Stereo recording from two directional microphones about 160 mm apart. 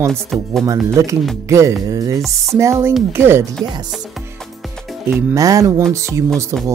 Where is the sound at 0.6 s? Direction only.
20° right (ahead or behind).